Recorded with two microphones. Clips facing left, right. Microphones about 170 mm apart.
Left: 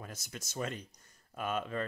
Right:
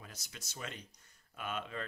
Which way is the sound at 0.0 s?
50° left (ahead or behind).